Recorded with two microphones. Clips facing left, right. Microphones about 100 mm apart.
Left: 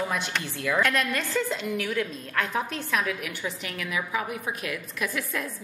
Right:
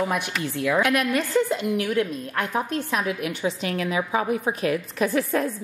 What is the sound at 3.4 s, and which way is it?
A woman's voice, 30° right (ahead or behind).